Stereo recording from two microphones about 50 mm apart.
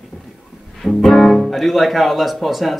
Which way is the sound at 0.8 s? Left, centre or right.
Centre.